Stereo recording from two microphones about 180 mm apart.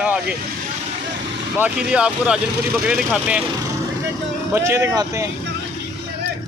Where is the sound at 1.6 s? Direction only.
5° right (ahead or behind).